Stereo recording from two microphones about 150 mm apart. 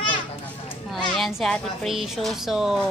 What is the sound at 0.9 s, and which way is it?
A woman's voice, centre (ahead or behind).